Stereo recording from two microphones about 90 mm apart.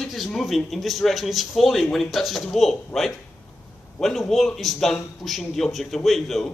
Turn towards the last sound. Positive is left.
turn(degrees=0)  # may be behind; listen again after turning